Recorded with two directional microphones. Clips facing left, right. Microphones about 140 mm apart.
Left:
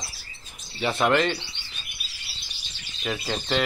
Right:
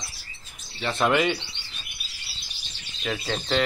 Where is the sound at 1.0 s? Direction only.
5° right (ahead or behind).